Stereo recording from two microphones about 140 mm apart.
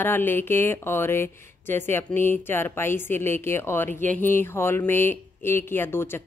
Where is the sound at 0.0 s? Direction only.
15° left (ahead or behind).